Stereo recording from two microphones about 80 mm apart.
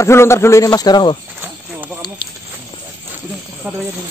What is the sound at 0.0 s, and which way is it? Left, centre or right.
A man's voice, left.